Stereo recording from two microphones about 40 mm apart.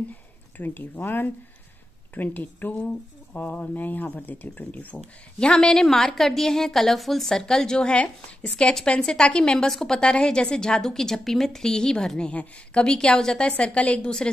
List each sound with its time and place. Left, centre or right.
0.6 s speech: left
5.4 s a woman's voice: centre
7.2 s a woman's voice: centre
7.9 s a woman's voice: left
13.5 s a woman's voice: left